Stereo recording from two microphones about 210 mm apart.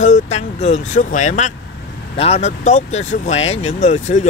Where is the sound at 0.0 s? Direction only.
35° left (ahead or behind).